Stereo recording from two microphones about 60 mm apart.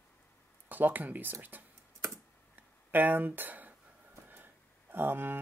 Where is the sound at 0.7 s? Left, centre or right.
Right.